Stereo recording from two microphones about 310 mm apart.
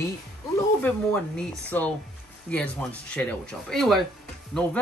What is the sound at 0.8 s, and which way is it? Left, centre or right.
Speech, centre.